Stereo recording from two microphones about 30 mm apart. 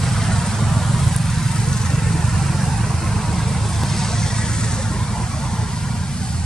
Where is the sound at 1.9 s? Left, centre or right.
Centre.